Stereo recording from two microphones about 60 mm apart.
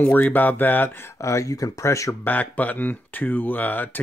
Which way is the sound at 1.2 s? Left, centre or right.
Left.